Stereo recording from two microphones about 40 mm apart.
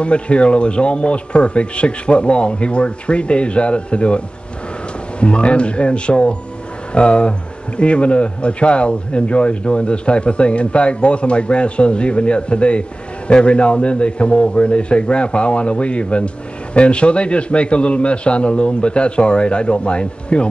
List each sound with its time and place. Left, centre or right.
0.0 s speech: left
5.2 s speech: left